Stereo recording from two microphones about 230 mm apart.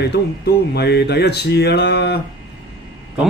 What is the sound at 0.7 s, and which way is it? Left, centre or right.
Speech, left.